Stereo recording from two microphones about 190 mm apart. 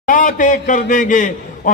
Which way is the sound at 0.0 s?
45° left (ahead or behind).